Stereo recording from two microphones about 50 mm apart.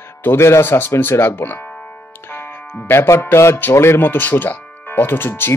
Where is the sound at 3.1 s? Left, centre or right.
Left.